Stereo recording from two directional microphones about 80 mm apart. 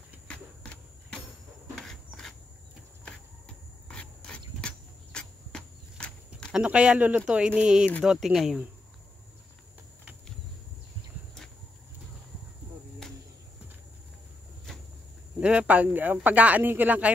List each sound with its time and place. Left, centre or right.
0.3 s vehicle: centre
1.8 s a sound: centre
3.9 s a sound: centre
6.5 s speech: centre
13.0 s insect: centre
15.4 s speech: centre